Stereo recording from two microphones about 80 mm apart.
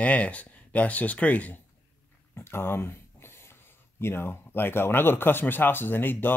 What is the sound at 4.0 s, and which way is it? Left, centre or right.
Speech, left.